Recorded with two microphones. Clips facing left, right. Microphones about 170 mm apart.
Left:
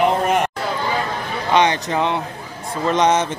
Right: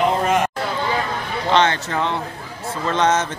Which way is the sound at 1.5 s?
15° left (ahead or behind).